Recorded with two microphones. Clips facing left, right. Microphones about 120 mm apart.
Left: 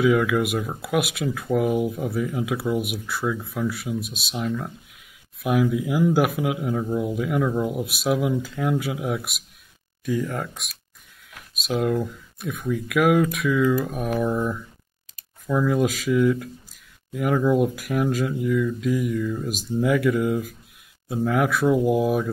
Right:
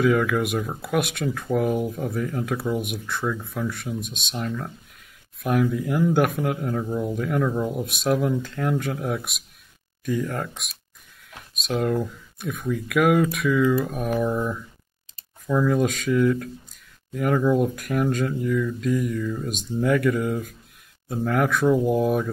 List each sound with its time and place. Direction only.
0.0 s speech: 5° left (ahead or behind)